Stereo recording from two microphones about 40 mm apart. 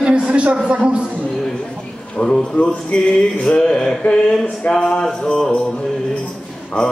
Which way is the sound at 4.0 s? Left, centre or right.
Left.